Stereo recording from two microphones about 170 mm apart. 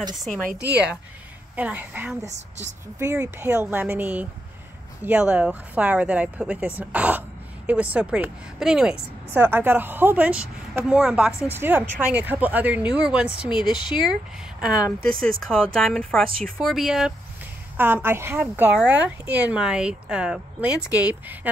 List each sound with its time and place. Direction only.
0.7 s speech: 10° right (ahead or behind)
2.2 s a woman's voice: 40° right (ahead or behind)
3.2 s a woman's voice: 10° right (ahead or behind)
17.7 s speech: 10° right (ahead or behind)